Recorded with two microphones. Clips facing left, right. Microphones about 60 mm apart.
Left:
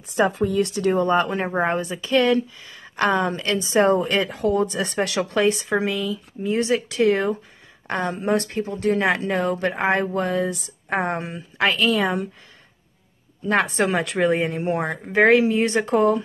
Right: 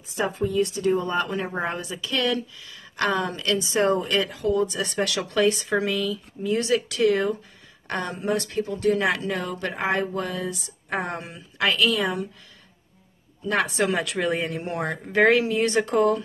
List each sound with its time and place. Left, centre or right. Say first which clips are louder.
0.1 s a woman's voice: left 5 dB; left
1.0 s speech: left 5 dB; left
4.4 s speech: left 2 dB; left
4.6 s speech: left 2 dB; left
8.2 s speech: left 1 dB; left
13.5 s speech: left 3 dB; left
14.1 s speech: left 5 dB; left